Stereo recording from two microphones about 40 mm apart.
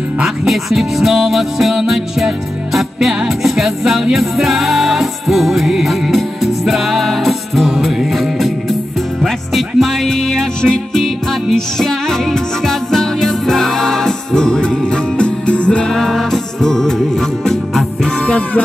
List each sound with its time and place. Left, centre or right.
0.5 s music: centre
10.0 s music: centre; by 15.8 s left
15.8 s music: centre
18.2 s music: left